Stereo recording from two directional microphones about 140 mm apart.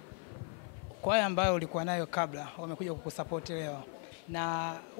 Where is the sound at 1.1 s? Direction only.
15° left (ahead or behind).